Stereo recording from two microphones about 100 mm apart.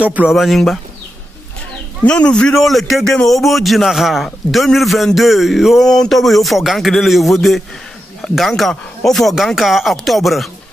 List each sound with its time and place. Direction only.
0.0 s speech: 15° right (ahead or behind)
0.3 s a man's voice: centre (ahead or behind)
2.0 s a man's voice: 10° left (ahead or behind)